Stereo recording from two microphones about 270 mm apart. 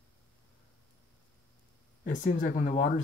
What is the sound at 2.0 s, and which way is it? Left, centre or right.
Speech, left.